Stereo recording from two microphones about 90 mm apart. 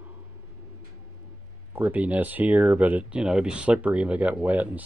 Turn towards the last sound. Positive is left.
turn(degrees=-20)  # may be behind; listen again after turning